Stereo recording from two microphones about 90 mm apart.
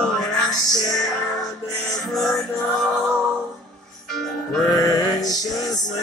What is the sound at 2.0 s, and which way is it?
Music, 5° left (ahead or behind).